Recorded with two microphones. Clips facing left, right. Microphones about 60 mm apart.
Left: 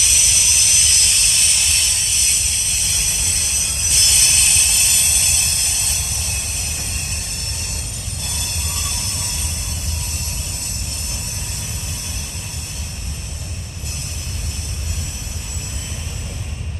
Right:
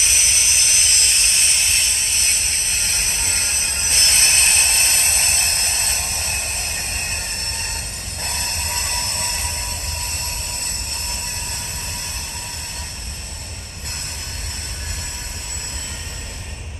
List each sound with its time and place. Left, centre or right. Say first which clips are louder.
0.0 s steam: right 1 dB; right
8.2 s train: right 4 dB; right